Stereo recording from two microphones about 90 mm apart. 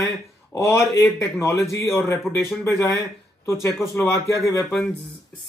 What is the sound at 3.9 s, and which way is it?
Speech, 30° left (ahead or behind).